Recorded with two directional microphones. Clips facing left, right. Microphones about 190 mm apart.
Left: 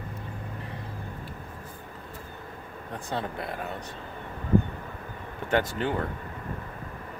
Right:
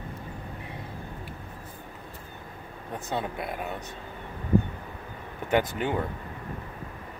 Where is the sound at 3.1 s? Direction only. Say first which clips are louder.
Right 1 dB; 15° right (ahead or behind).